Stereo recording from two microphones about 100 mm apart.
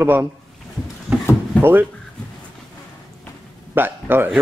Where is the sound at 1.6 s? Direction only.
20° right (ahead or behind).